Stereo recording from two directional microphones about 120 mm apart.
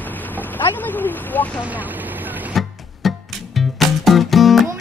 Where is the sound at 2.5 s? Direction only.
Centre (ahead or behind).